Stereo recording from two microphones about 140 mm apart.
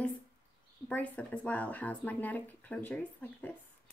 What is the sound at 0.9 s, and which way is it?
Speech, 10° left (ahead or behind).